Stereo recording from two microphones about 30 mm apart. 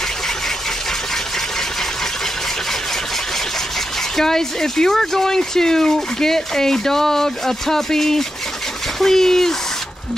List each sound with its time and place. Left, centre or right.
4.2 s speech: centre